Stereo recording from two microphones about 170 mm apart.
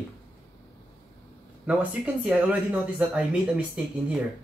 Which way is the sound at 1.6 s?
5° right (ahead or behind).